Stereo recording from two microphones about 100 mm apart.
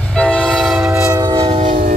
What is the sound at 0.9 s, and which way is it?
Train, 30° right (ahead or behind).